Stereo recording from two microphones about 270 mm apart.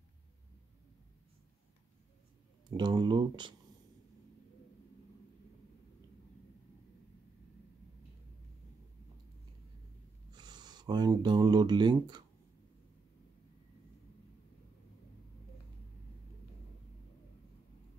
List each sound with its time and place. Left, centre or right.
2.8 s speech: centre
10.3 s speech: centre